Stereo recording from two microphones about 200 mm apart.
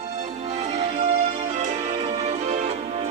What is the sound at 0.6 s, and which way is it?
Music, 35° right (ahead or behind).